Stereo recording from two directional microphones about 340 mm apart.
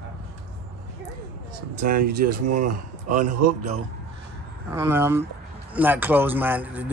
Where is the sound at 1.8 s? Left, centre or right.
Right.